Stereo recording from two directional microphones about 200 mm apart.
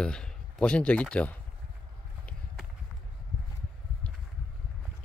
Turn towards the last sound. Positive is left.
turn(degrees=5)  # may be behind; listen again after turning